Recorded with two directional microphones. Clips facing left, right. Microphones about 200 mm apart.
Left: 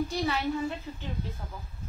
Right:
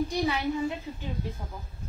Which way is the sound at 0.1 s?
15° right (ahead or behind).